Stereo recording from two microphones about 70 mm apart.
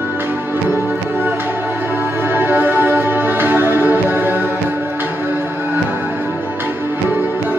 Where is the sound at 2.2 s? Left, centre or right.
Right.